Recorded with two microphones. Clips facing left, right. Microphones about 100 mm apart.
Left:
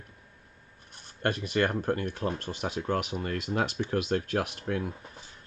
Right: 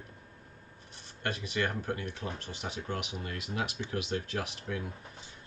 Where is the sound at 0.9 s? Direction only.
50° left (ahead or behind).